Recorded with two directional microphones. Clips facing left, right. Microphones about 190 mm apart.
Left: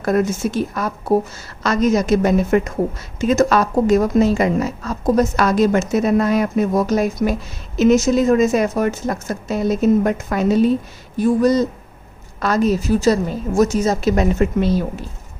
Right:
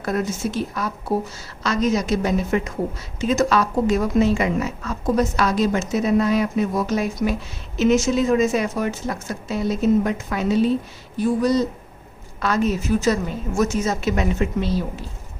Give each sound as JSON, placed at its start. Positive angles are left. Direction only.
{"t": 0.0, "sound": "speech", "side_deg": 50}